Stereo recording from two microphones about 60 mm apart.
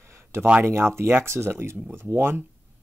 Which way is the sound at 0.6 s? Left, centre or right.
Right.